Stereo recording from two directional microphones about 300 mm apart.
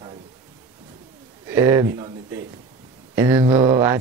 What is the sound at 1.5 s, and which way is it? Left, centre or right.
Speech, centre.